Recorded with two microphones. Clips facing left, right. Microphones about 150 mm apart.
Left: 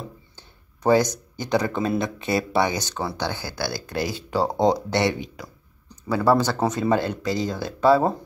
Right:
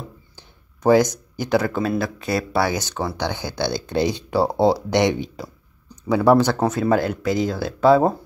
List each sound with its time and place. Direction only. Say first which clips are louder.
0.4 s speech: right 3 dB; 10° right (ahead or behind)
2.7 s speech: right 3 dB; 10° right (ahead or behind)
5.2 s speech: right 5 dB; 25° right (ahead or behind)
6.0 s speech: right 4 dB; 15° right (ahead or behind)